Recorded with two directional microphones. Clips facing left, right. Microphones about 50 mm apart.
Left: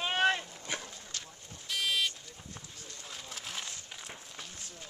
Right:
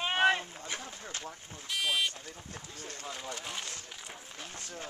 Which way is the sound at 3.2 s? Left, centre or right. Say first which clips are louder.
Right 1 dB; centre.